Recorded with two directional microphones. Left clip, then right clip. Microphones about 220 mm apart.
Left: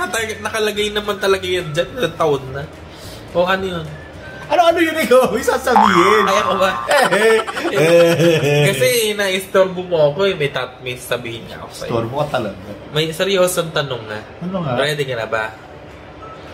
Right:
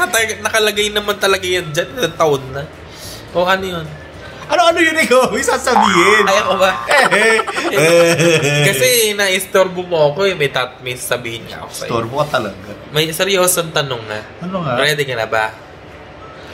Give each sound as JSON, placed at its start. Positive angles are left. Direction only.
{"t": 0.0, "sound": "a man's voice", "side_deg": -5}
{"t": 4.5, "sound": "speech", "side_deg": 20}
{"t": 5.8, "sound": "a man's voice", "side_deg": 5}
{"t": 6.9, "sound": "speech", "side_deg": 25}
{"t": 8.6, "sound": "a man's voice", "side_deg": 0}
{"t": 11.9, "sound": "speech", "side_deg": 20}
{"t": 12.9, "sound": "a man's voice", "side_deg": -5}